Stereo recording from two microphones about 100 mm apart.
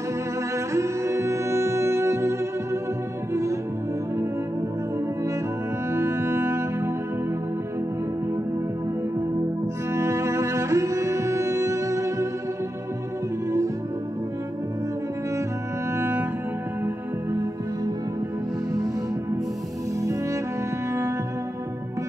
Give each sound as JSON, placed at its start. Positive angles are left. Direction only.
{"t": 0.7, "sound": "music", "side_deg": -30}
{"t": 5.9, "sound": "cello", "side_deg": -25}
{"t": 9.9, "sound": "music", "side_deg": -30}
{"t": 16.0, "sound": "cello", "side_deg": -20}
{"t": 16.8, "sound": "music", "side_deg": -30}